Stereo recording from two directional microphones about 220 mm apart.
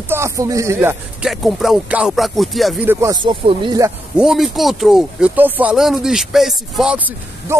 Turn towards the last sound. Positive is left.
turn(degrees=-5)  # may be behind; listen again after turning